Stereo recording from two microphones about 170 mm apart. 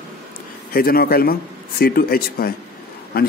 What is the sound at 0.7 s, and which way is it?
A man's voice, 60° left (ahead or behind).